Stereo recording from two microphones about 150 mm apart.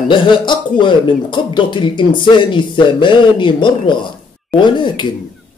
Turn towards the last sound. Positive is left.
turn(degrees=30)  # may be behind; listen again after turning